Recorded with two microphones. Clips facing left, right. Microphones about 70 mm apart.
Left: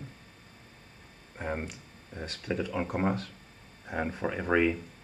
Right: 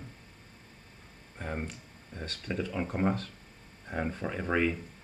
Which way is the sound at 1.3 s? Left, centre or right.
Left.